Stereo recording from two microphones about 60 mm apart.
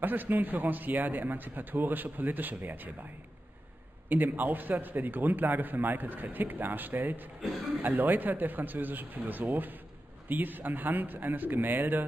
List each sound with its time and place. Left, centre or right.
0.0 s a man's voice: right
4.1 s a man's voice: right